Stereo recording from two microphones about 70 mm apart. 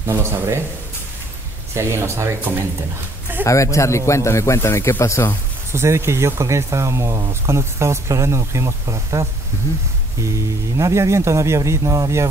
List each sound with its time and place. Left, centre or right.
0.0 s speech: right
1.7 s speech: right
3.4 s speech: left
5.7 s speech: right